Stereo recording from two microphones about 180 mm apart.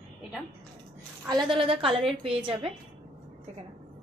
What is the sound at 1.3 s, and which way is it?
A woman's voice, 25° right (ahead or behind).